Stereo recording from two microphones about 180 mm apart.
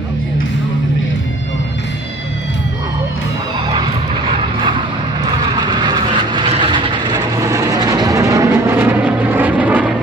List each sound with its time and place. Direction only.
5.6 s vehicle: 25° right (ahead or behind); by 9.9 s 5° right (ahead or behind)